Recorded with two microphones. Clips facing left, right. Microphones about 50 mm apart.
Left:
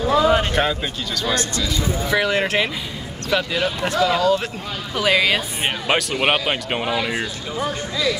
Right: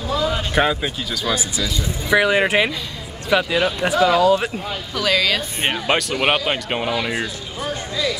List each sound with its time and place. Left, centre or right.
0.1 s a sound: left
0.6 s speech: centre
4.9 s speech: left
5.9 s speech: centre